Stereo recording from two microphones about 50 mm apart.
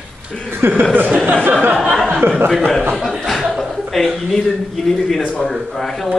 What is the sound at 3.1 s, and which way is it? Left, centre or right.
Speech, centre.